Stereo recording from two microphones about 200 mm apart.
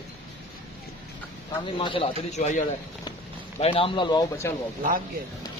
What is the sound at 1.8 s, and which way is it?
A man's voice, 25° left (ahead or behind).